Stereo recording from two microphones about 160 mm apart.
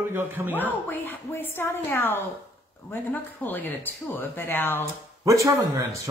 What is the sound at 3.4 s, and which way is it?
A woman's voice, 10° left (ahead or behind).